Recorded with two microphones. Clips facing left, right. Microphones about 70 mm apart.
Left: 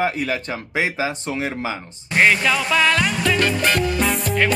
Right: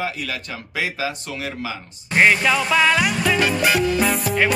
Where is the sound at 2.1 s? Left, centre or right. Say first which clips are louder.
Right 1 dB; centre.